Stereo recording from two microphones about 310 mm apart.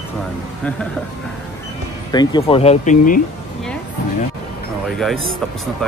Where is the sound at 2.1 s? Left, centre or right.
Centre.